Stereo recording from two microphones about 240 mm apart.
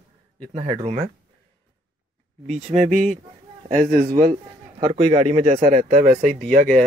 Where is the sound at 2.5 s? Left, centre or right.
Right.